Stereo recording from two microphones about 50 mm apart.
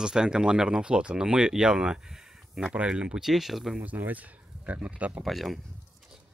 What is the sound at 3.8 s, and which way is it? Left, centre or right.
Speech, right.